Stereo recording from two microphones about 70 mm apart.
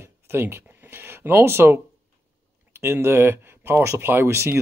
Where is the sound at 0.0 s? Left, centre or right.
Right.